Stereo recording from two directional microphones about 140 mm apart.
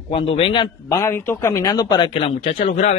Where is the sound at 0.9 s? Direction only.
20° left (ahead or behind).